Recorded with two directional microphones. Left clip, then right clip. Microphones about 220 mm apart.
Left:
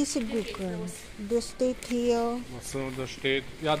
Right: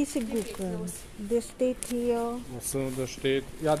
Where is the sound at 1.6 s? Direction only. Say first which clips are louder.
Left 1 dB; 5° left (ahead or behind).